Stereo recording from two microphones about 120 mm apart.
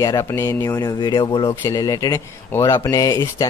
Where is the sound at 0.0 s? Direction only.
25° left (ahead or behind).